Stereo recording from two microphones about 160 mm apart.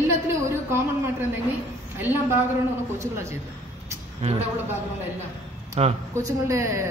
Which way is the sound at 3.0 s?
15° right (ahead or behind).